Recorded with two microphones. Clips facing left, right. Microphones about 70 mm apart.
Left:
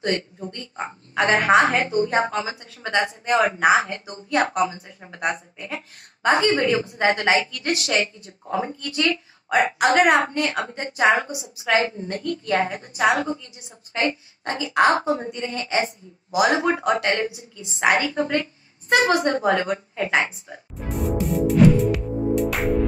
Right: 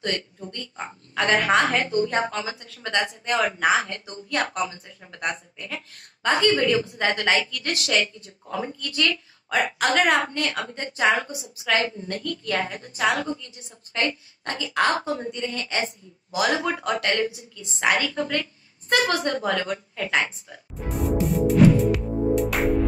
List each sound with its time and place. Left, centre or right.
0.0 s a woman's voice: left
20.7 s music: centre